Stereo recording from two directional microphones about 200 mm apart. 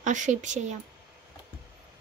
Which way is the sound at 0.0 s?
40° right (ahead or behind).